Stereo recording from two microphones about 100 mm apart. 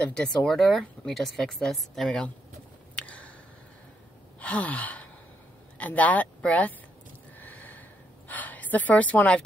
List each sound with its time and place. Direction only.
0.0 s speech: 10° left (ahead or behind)
3.0 s a sound: 10° left (ahead or behind)
4.4 s gasp: 15° left (ahead or behind)
5.8 s speech: 15° left (ahead or behind)
7.3 s a sound: 15° left (ahead or behind)
8.3 s a woman's voice: 15° left (ahead or behind)